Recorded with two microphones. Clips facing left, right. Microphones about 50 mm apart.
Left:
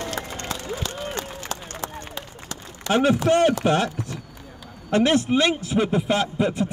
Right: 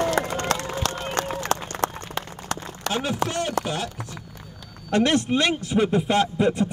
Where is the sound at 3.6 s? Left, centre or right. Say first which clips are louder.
Left 8 dB; left.